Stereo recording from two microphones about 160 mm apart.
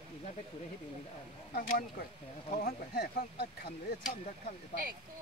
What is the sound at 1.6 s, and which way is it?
Speech, 60° left (ahead or behind).